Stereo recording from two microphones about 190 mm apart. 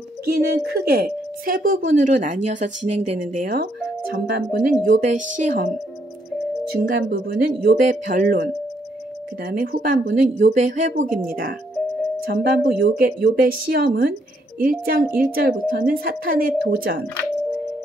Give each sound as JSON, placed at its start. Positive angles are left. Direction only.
{"t": 0.8, "sound": "speech", "side_deg": -55}
{"t": 6.7, "sound": "speech", "side_deg": -55}